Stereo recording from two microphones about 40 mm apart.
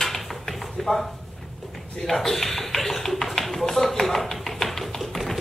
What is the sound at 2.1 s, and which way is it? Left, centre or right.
Tap, centre.